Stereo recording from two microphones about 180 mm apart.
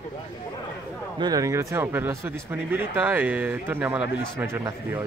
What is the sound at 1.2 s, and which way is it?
Speech, 20° right (ahead or behind).